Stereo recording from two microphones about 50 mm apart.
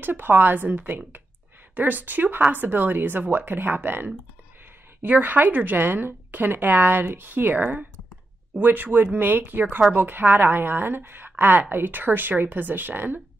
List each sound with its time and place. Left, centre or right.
0.0 s a woman's voice: right
5.2 s a woman's voice: right